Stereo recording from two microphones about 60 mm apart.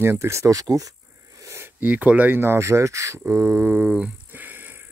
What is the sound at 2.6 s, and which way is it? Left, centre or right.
Speech, right.